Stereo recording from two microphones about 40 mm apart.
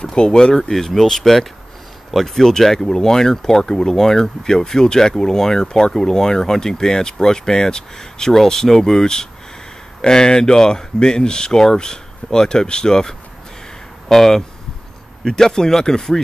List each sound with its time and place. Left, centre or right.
0.0 s speech: centre
0.6 s speech: centre